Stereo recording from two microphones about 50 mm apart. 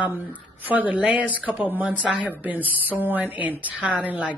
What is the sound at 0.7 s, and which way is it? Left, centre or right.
Speech, right.